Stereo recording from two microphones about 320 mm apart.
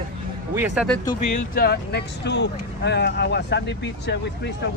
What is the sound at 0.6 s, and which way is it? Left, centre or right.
Speech, centre.